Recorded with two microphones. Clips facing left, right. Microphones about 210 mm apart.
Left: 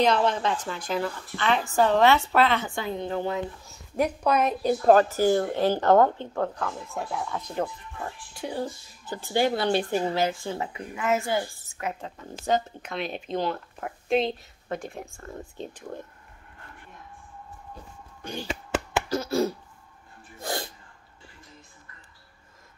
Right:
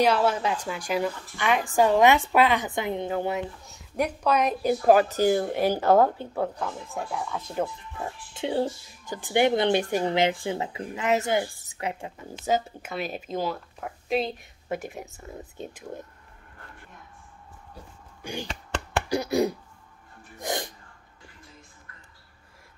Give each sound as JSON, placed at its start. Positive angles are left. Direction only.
{"t": 0.0, "sound": "a woman's voice", "side_deg": -10}
{"t": 3.6, "sound": "speech", "side_deg": 0}
{"t": 4.6, "sound": "a woman's voice", "side_deg": -10}
{"t": 7.0, "sound": "speech", "side_deg": 0}
{"t": 8.4, "sound": "speech", "side_deg": -25}
{"t": 9.0, "sound": "a woman's voice", "side_deg": -15}
{"t": 12.4, "sound": "speech", "side_deg": -5}
{"t": 18.2, "sound": "a woman's voice", "side_deg": -10}
{"t": 20.3, "sound": "music", "side_deg": -15}